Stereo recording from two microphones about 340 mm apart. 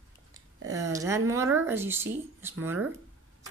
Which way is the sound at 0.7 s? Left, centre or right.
Centre.